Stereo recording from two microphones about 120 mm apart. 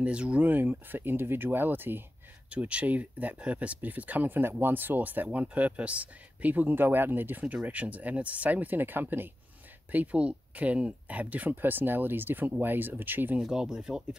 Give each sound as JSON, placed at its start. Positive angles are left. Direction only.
{"t": 0.0, "sound": "speech", "side_deg": -10}
{"t": 13.4, "sound": "speech", "side_deg": -5}